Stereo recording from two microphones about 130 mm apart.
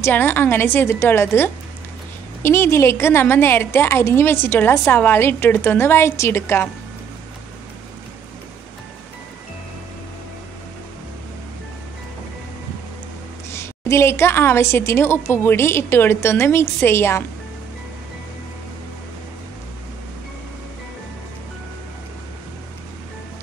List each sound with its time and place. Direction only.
0.0 s a woman's voice: 15° left (ahead or behind)
13.5 s a woman's voice: 20° left (ahead or behind)